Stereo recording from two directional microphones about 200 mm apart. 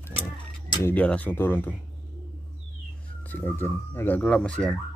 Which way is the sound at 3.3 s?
10° left (ahead or behind).